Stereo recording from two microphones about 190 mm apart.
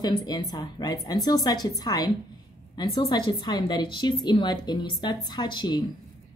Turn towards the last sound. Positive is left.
turn(degrees=25)  # may be behind; listen again after turning